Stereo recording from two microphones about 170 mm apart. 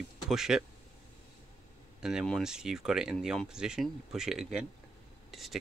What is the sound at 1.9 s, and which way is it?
Speech, 5° right (ahead or behind).